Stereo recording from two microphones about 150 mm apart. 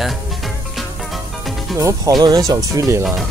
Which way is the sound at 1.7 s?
20° right (ahead or behind).